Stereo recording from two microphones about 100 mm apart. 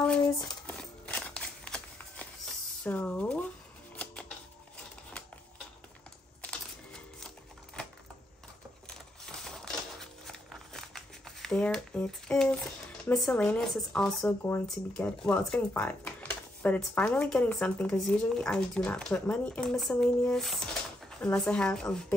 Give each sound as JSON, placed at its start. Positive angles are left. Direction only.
{"t": 0.7, "sound": "scissors", "side_deg": 15}
{"t": 2.8, "sound": "speech", "side_deg": 10}
{"t": 3.9, "sound": "music", "side_deg": 10}
{"t": 6.4, "sound": "music", "side_deg": 10}
{"t": 8.8, "sound": "a sound", "side_deg": 5}
{"t": 13.1, "sound": "speech", "side_deg": 5}
{"t": 14.2, "sound": "speech", "side_deg": 25}
{"t": 15.0, "sound": "speech", "side_deg": 15}